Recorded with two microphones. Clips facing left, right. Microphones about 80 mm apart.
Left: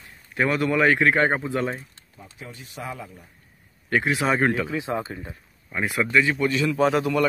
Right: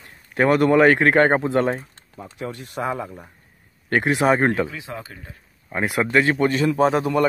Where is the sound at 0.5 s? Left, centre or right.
Right.